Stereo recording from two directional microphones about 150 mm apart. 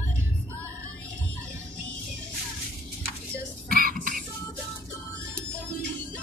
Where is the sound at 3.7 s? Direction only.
75° right (ahead or behind).